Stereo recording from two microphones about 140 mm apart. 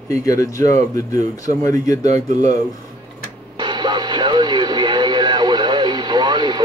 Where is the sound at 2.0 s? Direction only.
55° right (ahead or behind).